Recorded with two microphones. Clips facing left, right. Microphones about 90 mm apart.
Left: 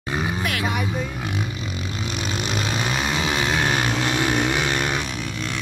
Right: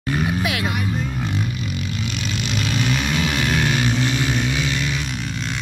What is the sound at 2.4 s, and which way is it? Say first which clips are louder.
Vehicle: right 3 dB; 30° left (ahead or behind).